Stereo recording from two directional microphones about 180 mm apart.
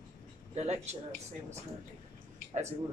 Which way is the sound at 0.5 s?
40° right (ahead or behind).